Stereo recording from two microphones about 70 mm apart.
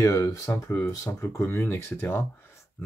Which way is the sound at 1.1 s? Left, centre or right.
Left.